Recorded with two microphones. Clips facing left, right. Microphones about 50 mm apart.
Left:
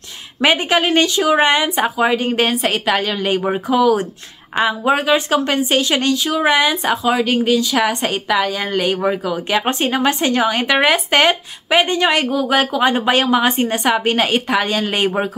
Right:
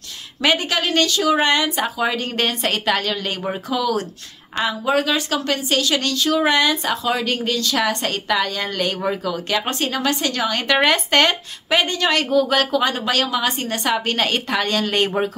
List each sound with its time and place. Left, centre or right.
0.4 s a woman's voice: centre